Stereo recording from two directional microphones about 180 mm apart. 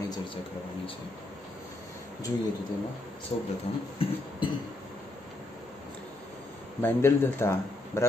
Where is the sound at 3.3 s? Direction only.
35° left (ahead or behind).